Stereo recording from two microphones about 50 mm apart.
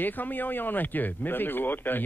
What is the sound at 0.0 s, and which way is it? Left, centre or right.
Speech, left.